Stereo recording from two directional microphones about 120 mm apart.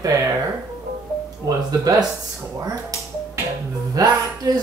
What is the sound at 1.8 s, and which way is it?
Speech, 30° right (ahead or behind).